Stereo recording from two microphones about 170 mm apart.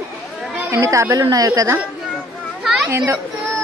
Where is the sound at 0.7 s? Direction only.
20° right (ahead or behind).